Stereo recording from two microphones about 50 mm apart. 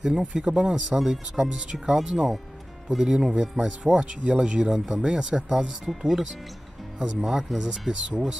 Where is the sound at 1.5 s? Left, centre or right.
Right.